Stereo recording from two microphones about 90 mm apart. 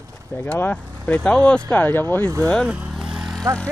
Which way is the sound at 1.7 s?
20° left (ahead or behind).